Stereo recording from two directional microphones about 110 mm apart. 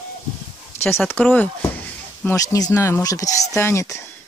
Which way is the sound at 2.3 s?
35° left (ahead or behind).